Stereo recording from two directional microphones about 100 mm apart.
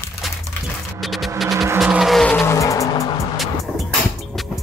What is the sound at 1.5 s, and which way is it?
Music, 35° right (ahead or behind).